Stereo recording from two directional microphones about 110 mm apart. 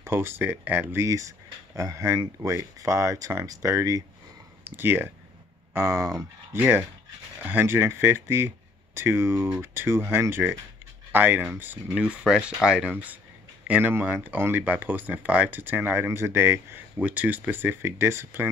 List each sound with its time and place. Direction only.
0.0 s speech: 20° right (ahead or behind)
1.0 s speech: 30° right (ahead or behind)
4.6 s speech: 20° right (ahead or behind)